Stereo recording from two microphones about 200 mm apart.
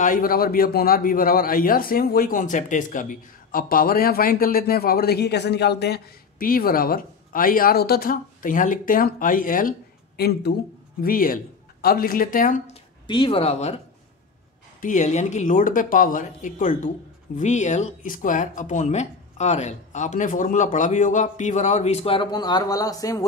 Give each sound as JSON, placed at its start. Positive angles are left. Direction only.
{"t": 0.0, "sound": "a man's voice", "side_deg": 45}
{"t": 13.0, "sound": "speech", "side_deg": 25}
{"t": 14.8, "sound": "speech", "side_deg": 40}